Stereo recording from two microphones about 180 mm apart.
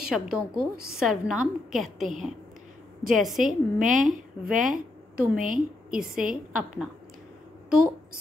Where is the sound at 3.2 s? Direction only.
45° right (ahead or behind).